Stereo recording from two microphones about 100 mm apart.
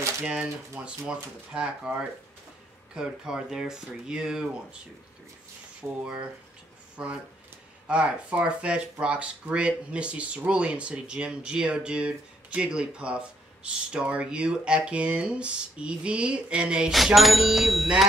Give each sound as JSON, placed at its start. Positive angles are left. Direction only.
{"t": 0.2, "sound": "speech", "side_deg": -10}
{"t": 5.8, "sound": "speech", "side_deg": -20}